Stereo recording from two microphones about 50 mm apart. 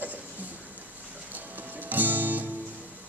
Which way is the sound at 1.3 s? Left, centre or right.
Right.